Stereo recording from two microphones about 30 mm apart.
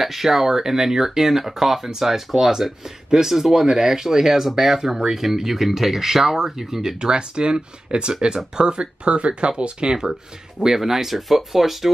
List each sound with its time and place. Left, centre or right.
0.0 s speech: centre
6.7 s speech: centre; by 9.9 s right
10.6 s speech: centre